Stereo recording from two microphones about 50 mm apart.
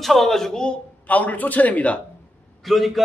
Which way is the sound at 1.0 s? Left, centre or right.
Left.